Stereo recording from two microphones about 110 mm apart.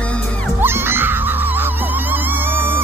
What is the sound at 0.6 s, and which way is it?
Music, 20° right (ahead or behind).